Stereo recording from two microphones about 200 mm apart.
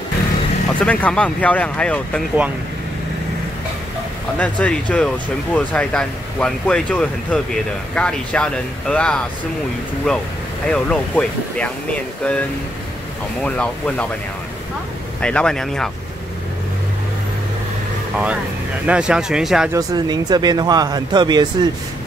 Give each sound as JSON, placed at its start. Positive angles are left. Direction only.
{"t": 0.7, "sound": "speech", "side_deg": 5}
{"t": 4.4, "sound": "speech", "side_deg": 5}
{"t": 15.2, "sound": "speech", "side_deg": 5}
{"t": 18.9, "sound": "speech", "side_deg": -5}
{"t": 19.7, "sound": "speech", "side_deg": -20}